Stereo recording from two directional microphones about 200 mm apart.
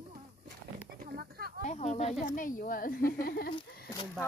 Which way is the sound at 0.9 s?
50° right (ahead or behind).